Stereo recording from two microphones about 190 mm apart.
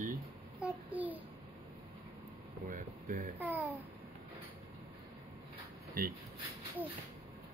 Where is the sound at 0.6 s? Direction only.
10° right (ahead or behind).